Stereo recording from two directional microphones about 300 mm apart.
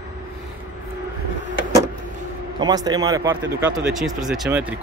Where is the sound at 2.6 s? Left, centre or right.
Centre.